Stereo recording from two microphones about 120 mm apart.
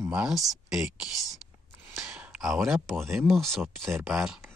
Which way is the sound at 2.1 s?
10° right (ahead or behind).